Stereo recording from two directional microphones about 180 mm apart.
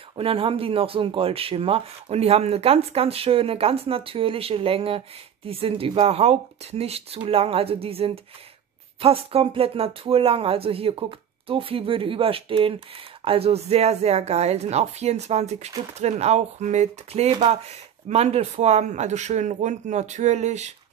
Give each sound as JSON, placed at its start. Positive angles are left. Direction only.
{"t": 0.1, "sound": "speech", "side_deg": -30}